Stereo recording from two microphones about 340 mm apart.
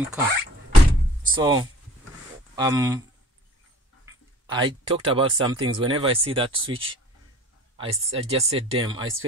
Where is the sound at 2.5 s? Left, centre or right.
Centre.